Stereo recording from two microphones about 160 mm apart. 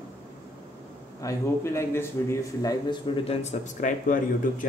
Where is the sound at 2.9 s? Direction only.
40° left (ahead or behind); by 4.7 s 55° left (ahead or behind).